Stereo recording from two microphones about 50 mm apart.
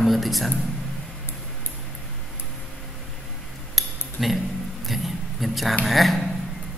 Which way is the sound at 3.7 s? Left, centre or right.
Centre.